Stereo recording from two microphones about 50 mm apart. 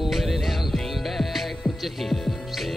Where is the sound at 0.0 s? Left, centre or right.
Centre.